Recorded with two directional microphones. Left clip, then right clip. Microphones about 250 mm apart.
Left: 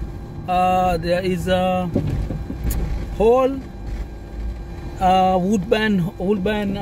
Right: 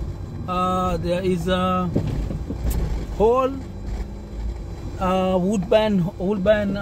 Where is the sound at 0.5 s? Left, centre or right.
Left.